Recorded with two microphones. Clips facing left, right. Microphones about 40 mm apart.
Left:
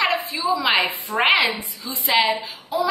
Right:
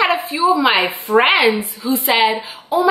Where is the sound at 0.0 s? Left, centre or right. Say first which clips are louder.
Right 6 dB; right.